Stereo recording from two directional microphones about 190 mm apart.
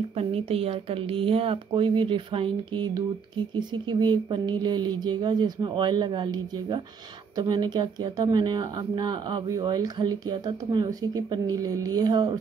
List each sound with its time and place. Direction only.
0.1 s speech: 30° right (ahead or behind)